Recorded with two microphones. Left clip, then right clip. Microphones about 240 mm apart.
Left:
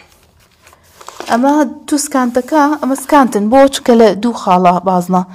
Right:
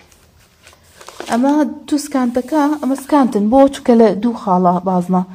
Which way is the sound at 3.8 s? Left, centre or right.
Left.